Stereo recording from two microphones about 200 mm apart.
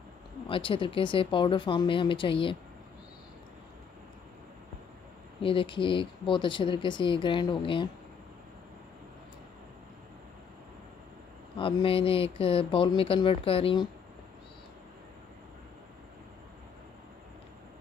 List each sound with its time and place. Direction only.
0.5 s speech: 25° left (ahead or behind)
5.4 s speech: 25° left (ahead or behind)
11.5 s speech: 25° left (ahead or behind)